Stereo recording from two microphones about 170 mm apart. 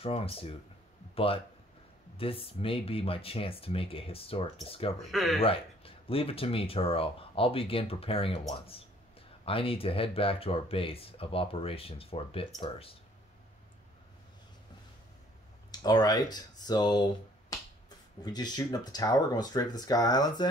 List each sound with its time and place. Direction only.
0.0 s a man's voice: 35° left (ahead or behind)
5.1 s speech: centre (ahead or behind)
5.4 s speech: 35° left (ahead or behind)
15.7 s speech: 25° left (ahead or behind)